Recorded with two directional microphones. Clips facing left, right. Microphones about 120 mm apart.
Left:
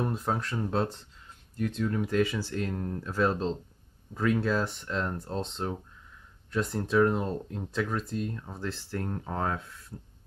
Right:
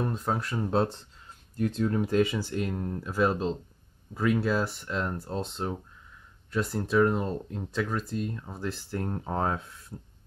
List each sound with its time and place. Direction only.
0.0 s speech: centre (ahead or behind)
0.7 s speech: 25° right (ahead or behind)